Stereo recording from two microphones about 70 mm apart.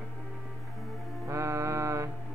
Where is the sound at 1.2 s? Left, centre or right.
Right.